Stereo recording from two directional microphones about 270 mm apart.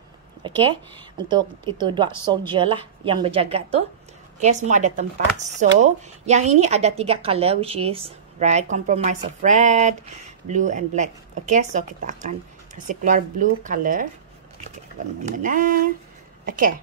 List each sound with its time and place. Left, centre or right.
0.4 s a woman's voice: centre
15.2 s a woman's voice: right